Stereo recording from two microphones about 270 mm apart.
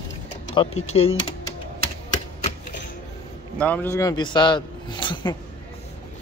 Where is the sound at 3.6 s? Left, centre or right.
Centre.